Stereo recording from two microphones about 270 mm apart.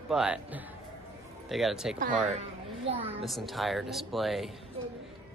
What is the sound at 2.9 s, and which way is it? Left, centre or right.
Speech, right.